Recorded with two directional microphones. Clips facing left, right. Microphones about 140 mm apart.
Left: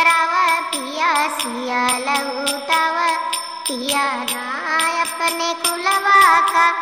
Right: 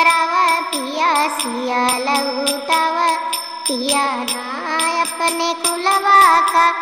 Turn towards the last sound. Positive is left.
turn(degrees=-25)  # may be behind; listen again after turning